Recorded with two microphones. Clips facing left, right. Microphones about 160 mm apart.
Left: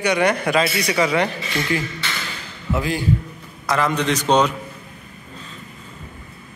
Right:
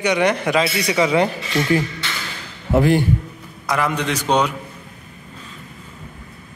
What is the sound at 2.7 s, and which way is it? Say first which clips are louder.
Speech: right 7 dB; 55° right (ahead or behind).